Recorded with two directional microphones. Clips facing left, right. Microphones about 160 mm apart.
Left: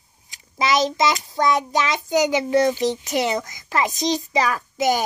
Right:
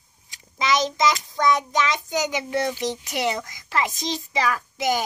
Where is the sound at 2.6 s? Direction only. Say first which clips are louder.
Left 6 dB; 40° left (ahead or behind).